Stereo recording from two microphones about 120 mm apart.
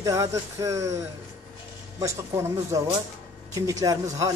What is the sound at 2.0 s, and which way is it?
Speech, 25° right (ahead or behind).